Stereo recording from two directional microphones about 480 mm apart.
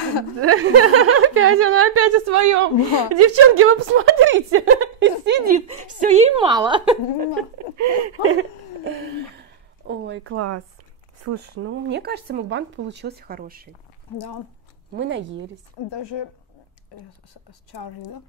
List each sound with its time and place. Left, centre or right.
0.4 s speech: right; by 7.2 s centre
7.3 s speech: right
9.4 s a sound: right
11.2 s speech: right
14.1 s speech: left
15.0 s speech: right
15.9 s a woman's voice: left
17.5 s speech: left